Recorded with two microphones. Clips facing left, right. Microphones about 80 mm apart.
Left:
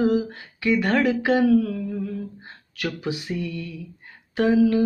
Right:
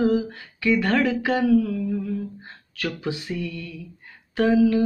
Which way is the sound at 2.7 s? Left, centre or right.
Centre.